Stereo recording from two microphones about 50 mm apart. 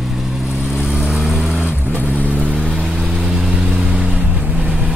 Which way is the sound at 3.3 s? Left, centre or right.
Centre.